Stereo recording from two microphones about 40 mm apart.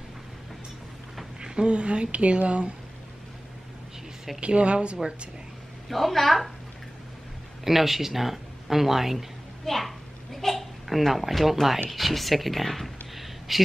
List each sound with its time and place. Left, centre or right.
1.4 s a woman's voice: right
4.4 s a woman's voice: right
5.9 s a woman's voice: centre
7.6 s speech: centre
9.7 s a child's voice: centre